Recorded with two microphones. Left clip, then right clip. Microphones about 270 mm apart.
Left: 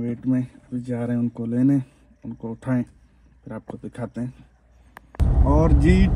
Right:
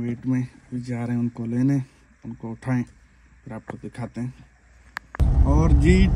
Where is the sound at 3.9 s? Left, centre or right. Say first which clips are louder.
Left 4 dB; centre.